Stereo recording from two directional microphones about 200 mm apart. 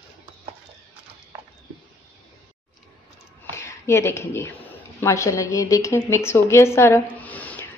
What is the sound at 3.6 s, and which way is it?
A woman's voice, 15° left (ahead or behind).